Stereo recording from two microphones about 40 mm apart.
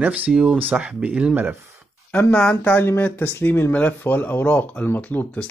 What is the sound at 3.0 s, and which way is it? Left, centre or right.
Speech, left.